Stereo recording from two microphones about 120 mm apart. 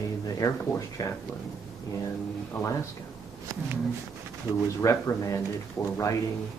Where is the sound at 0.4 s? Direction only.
25° left (ahead or behind).